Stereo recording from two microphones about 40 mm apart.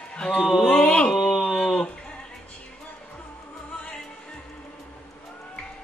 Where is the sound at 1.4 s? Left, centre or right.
Centre.